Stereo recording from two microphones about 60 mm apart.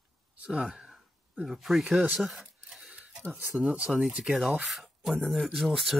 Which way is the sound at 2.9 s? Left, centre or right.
Centre.